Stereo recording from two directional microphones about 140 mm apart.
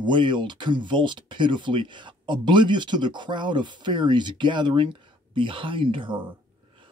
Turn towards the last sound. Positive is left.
turn(degrees=-35)  # may be behind; listen again after turning